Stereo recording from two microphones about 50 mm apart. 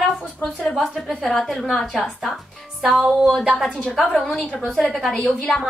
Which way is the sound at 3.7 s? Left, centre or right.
Centre.